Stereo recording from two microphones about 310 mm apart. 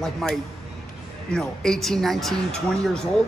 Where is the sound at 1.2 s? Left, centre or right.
Centre.